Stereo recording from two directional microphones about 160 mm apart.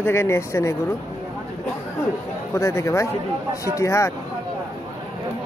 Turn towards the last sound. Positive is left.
turn(degrees=15)  # may be behind; listen again after turning